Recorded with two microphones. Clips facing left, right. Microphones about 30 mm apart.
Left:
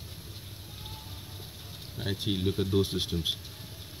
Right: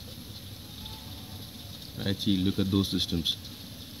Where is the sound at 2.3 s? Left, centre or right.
Centre.